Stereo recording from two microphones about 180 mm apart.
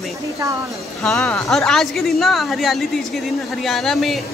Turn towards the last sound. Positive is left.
turn(degrees=0)  # may be behind; listen again after turning